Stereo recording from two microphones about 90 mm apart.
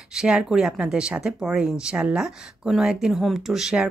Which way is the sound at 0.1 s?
10° right (ahead or behind).